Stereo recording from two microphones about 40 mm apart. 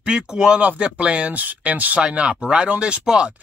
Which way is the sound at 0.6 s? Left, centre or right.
Right.